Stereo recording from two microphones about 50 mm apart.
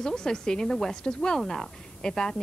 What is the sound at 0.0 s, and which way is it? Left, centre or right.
Speech, centre.